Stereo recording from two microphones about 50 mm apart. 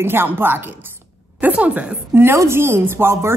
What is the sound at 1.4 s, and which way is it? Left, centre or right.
Speech, right.